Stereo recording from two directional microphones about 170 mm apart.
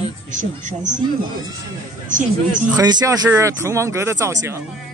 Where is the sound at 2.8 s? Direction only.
25° right (ahead or behind).